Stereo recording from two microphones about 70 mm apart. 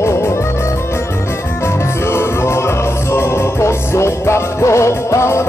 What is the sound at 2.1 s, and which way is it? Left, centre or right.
Music, left.